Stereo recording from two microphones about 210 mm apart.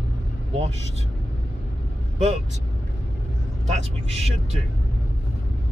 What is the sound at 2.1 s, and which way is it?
Speech, 30° right (ahead or behind).